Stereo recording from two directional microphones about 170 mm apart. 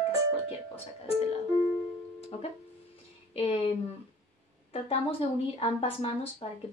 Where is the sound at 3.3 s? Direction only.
35° left (ahead or behind).